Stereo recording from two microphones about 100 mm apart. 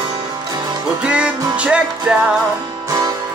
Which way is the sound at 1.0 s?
10° right (ahead or behind).